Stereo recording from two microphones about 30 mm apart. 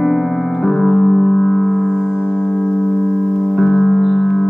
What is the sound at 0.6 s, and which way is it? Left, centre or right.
Music, centre.